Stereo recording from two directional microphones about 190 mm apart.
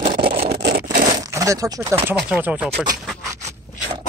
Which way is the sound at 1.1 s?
15° right (ahead or behind).